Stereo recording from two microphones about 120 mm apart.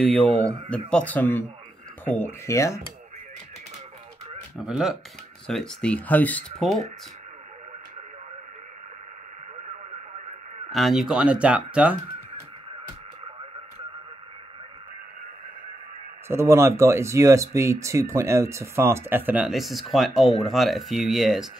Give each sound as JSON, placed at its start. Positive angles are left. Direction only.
{"t": 0.0, "sound": "speech", "side_deg": 10}
{"t": 4.6, "sound": "speech", "side_deg": -5}
{"t": 10.7, "sound": "speech", "side_deg": 0}
{"t": 16.3, "sound": "speech", "side_deg": -25}